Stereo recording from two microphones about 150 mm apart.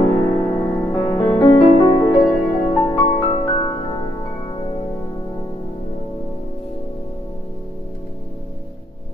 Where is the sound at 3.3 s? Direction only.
30° left (ahead or behind).